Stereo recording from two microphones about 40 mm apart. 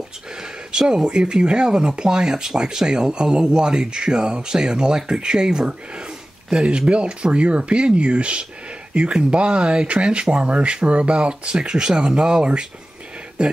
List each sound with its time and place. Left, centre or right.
0.4 s speech: centre